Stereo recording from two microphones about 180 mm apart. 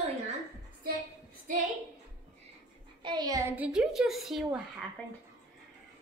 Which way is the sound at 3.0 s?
25° right (ahead or behind).